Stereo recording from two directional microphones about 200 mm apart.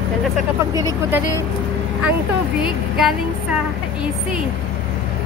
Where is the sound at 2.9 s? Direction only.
Centre (ahead or behind).